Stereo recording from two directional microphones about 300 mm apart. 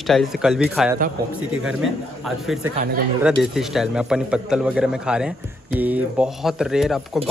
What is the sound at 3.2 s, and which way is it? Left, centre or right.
Speech, centre.